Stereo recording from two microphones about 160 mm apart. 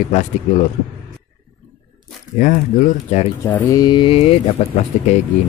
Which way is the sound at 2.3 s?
55° left (ahead or behind).